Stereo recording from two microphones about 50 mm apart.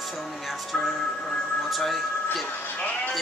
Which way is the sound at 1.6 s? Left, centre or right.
Centre.